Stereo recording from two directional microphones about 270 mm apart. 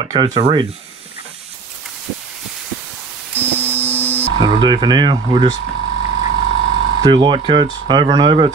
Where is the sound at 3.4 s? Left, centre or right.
Centre.